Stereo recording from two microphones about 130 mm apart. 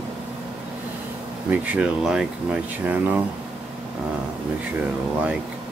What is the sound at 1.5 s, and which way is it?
Speech, 10° right (ahead or behind).